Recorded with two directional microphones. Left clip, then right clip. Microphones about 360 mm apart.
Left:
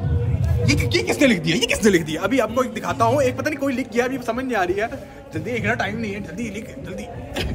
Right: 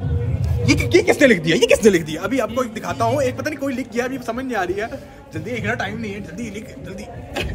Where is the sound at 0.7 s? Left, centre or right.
Centre.